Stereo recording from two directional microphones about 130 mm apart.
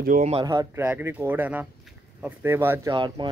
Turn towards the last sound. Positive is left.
turn(degrees=-35)  # may be behind; listen again after turning